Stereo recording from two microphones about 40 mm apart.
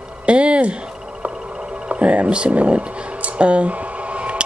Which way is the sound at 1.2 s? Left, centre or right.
Right.